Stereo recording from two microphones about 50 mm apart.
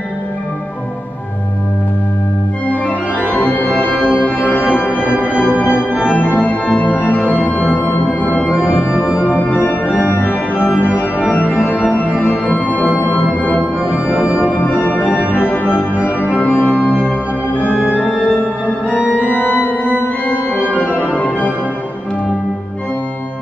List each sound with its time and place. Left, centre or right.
3.5 s music: left
4.9 s music: right
6.0 s music: left
10.2 s organ: left
11.5 s music: left
13.6 s music: right
14.3 s music: left
15.3 s organ: left
20.9 s music: left